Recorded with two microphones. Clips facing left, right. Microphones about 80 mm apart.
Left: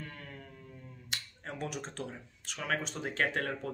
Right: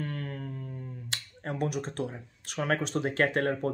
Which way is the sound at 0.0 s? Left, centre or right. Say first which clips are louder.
Right 10 dB; right.